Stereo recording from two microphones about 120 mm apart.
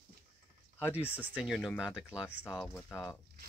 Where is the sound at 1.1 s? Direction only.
10° right (ahead or behind).